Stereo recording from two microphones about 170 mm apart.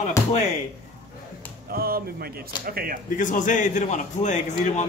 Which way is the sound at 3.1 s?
50° left (ahead or behind).